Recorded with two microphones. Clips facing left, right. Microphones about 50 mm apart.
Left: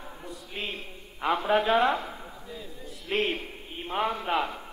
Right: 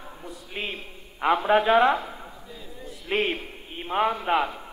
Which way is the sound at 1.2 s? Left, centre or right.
Right.